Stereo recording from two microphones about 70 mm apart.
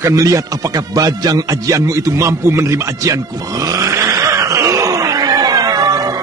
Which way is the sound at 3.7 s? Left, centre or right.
Right.